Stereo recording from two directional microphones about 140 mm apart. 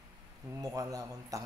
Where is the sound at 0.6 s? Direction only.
25° right (ahead or behind).